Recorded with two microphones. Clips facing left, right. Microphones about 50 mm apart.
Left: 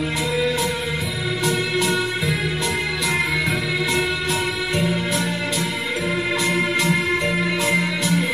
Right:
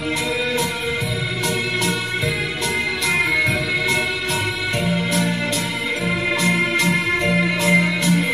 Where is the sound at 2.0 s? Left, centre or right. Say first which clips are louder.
Even; right.